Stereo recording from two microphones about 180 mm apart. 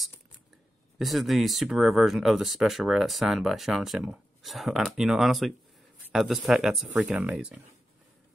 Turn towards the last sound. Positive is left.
turn(degrees=-5)  # may be behind; listen again after turning